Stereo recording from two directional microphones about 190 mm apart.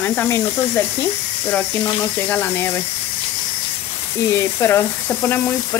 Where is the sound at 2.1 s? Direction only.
10° left (ahead or behind).